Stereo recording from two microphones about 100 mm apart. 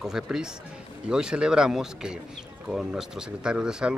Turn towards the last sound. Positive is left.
turn(degrees=-5)  # may be behind; listen again after turning